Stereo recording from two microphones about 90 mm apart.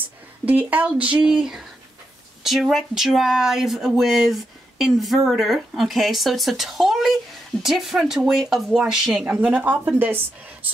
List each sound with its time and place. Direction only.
0.5 s speech: 15° right (ahead or behind)
9.2 s speech: 15° right (ahead or behind)